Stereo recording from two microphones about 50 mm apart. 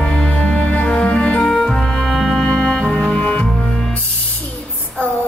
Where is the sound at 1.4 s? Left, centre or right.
Centre.